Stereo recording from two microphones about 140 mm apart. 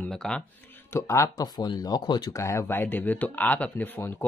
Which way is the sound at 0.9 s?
20° left (ahead or behind).